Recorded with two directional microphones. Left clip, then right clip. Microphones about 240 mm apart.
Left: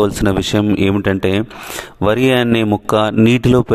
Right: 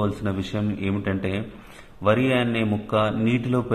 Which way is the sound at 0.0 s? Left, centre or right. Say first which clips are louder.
Left 12 dB; left.